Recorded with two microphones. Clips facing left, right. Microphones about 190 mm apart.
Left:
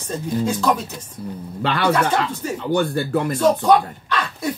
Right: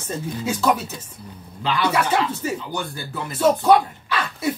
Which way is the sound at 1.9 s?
10° right (ahead or behind).